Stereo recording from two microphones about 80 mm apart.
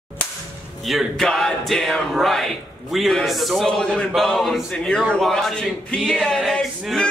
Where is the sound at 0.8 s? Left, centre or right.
Centre.